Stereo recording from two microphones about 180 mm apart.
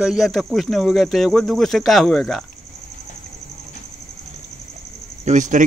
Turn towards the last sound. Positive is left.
turn(degrees=-45)  # may be behind; listen again after turning